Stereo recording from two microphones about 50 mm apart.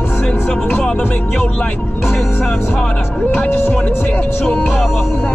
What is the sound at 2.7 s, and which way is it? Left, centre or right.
Music, left.